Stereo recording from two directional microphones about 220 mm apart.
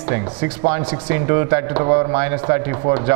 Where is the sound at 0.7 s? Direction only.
10° right (ahead or behind).